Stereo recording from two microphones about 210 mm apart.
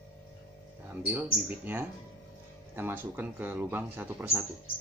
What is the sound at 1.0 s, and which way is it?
Speech, 10° right (ahead or behind).